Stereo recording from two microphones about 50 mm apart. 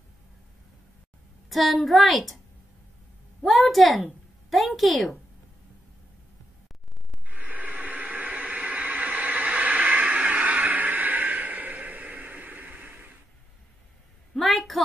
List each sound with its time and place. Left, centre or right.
1.5 s a woman's voice: centre
3.4 s a woman's voice: centre
7.2 s a sound: right
14.3 s a woman's voice: centre